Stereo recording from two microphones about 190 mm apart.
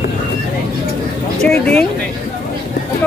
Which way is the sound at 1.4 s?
5° left (ahead or behind).